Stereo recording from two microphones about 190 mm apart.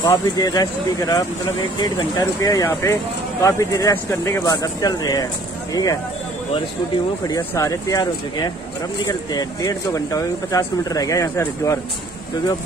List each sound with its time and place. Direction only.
0.1 s speech: 20° left (ahead or behind)
7.2 s speech: 15° left (ahead or behind)